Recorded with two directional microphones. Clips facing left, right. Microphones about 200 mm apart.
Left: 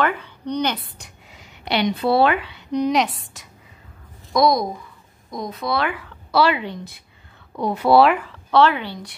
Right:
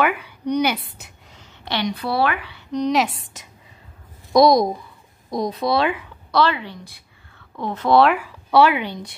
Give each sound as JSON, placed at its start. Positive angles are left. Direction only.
{"t": 0.0, "sound": "a woman's voice", "side_deg": -10}
{"t": 1.3, "sound": "speech", "side_deg": 20}
{"t": 2.9, "sound": "a woman's voice", "side_deg": 0}
{"t": 4.3, "sound": "speech", "side_deg": -30}
{"t": 6.3, "sound": "a woman's voice", "side_deg": 15}
{"t": 8.3, "sound": "speech", "side_deg": -10}